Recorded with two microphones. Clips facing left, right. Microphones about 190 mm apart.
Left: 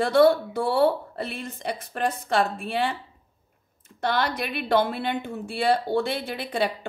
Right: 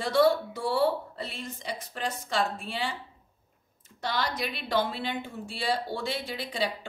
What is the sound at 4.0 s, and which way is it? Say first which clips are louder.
A woman's voice: left 5 dB; 60° left (ahead or behind).